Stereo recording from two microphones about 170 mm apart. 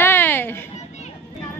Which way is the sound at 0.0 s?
10° left (ahead or behind).